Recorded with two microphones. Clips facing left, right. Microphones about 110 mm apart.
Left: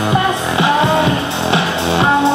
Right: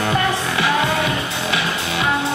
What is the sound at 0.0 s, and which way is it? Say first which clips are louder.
Music: left 4 dB; 20° left (ahead or behind).